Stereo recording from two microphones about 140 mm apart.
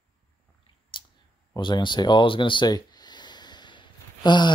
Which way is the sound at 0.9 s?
35° left (ahead or behind).